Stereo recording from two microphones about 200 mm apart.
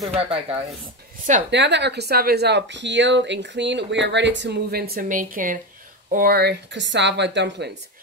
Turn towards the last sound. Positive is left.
turn(degrees=-60)  # may be behind; listen again after turning